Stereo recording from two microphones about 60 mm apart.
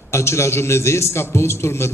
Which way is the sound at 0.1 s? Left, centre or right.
Left.